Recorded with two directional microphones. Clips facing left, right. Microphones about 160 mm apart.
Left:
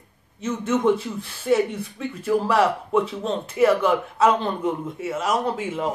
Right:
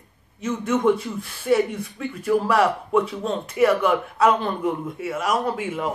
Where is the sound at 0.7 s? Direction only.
Centre (ahead or behind).